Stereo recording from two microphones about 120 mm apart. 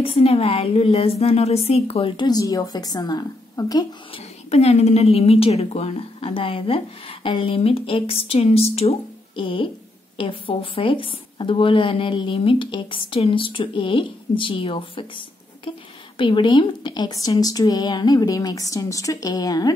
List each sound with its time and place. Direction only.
0.0 s a woman's voice: 55° left (ahead or behind)
2.2 s a woman's voice: 30° left (ahead or behind)
4.1 s a woman's voice: 60° left (ahead or behind); by 19.7 s 35° left (ahead or behind)